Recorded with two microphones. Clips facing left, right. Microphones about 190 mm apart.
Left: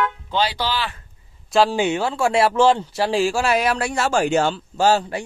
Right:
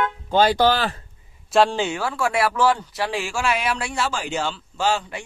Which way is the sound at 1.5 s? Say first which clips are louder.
Even; centre (ahead or behind).